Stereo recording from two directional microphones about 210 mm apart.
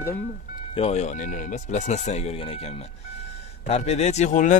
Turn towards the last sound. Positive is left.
turn(degrees=35)  # may be behind; listen again after turning